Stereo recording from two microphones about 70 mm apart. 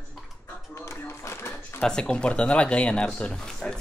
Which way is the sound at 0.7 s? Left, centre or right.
Left.